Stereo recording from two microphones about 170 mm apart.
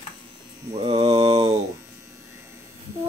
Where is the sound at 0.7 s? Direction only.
35° right (ahead or behind).